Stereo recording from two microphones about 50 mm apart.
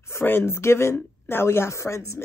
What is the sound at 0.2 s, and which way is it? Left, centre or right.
Speech, left.